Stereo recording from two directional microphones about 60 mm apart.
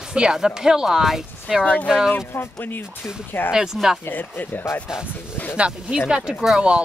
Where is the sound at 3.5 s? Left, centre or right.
Centre.